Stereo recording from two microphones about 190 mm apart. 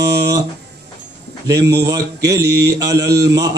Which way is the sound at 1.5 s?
60° right (ahead or behind).